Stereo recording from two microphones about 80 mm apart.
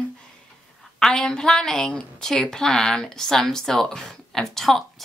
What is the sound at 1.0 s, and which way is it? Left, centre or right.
A woman's voice, centre.